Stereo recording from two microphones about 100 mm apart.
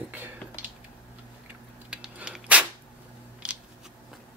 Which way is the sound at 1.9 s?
5° right (ahead or behind).